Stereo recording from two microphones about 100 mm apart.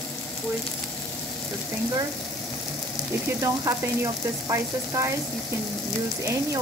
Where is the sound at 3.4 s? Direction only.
30° right (ahead or behind).